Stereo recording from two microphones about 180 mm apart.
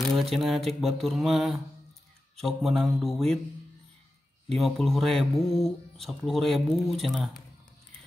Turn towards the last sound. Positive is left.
turn(degrees=0)  # may be behind; listen again after turning